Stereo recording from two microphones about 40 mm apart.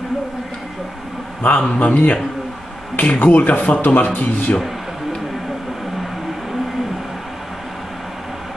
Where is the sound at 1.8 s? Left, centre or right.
Left.